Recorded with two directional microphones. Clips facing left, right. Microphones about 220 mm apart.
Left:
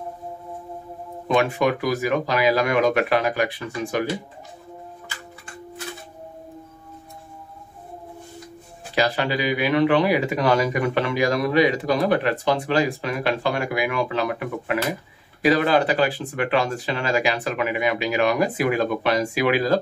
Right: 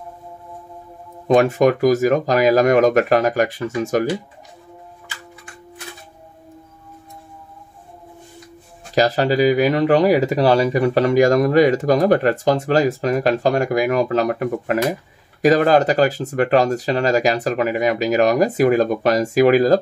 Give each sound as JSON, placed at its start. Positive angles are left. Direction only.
{"t": 1.2, "sound": "speech", "side_deg": -40}
{"t": 8.9, "sound": "speech", "side_deg": -40}